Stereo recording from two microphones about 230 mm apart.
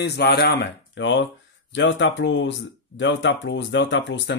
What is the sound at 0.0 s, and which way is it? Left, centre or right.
Speech, left.